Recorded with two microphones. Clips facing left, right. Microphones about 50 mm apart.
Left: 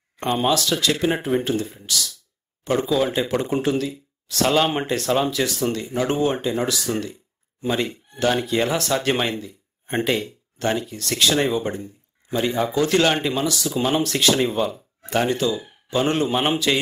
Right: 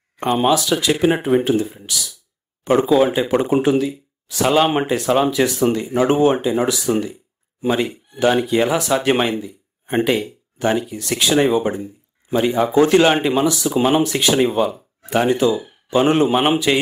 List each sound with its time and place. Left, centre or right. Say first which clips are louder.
0.2 s speech: right 4 dB; centre